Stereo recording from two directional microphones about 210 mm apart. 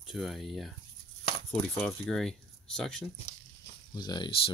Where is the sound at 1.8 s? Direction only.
Centre (ahead or behind).